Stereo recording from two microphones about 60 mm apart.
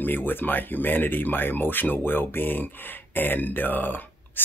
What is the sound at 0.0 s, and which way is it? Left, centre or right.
Speech, left.